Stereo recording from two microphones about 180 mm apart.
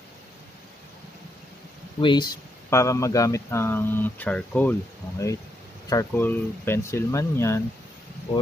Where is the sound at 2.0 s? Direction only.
25° left (ahead or behind).